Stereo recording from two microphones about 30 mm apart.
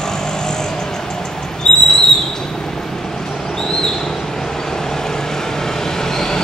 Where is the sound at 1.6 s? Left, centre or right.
Centre.